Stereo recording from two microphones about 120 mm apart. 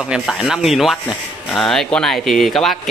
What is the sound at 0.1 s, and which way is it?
Speech, 5° right (ahead or behind).